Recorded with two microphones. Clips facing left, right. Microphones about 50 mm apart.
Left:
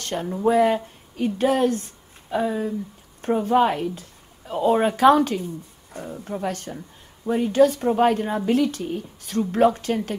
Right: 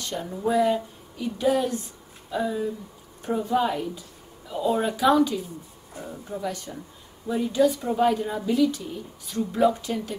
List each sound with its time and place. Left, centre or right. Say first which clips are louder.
0.0 s a woman's voice: left 5 dB; left